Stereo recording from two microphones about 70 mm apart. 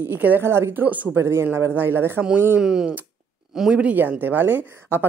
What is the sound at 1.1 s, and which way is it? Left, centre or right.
Speech, right.